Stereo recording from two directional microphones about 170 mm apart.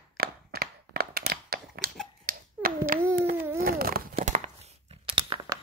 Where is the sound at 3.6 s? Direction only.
60° right (ahead or behind); by 5.5 s 30° right (ahead or behind).